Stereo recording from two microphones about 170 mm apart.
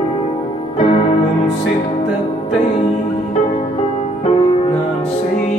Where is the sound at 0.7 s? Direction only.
35° left (ahead or behind).